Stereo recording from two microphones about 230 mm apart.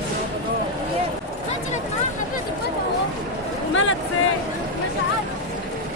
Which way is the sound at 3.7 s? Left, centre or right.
Left.